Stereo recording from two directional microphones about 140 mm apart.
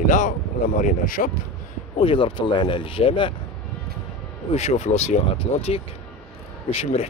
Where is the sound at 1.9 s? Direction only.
40° left (ahead or behind).